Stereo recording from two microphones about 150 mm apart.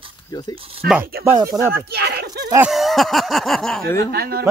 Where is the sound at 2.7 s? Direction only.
Centre (ahead or behind).